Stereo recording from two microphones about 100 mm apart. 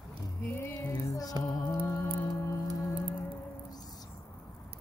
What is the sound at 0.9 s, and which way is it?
Music, 40° left (ahead or behind).